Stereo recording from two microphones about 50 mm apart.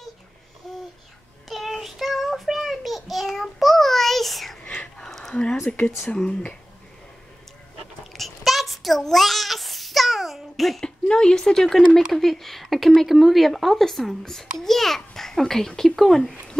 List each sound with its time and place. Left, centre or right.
0.7 s babbling: centre
1.5 s child singing: centre
4.9 s a sound: centre
6.0 s speech: centre
8.1 s a sound: centre
11.1 s a child's voice: centre